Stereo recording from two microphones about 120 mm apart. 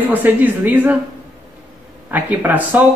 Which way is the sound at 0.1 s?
15° right (ahead or behind).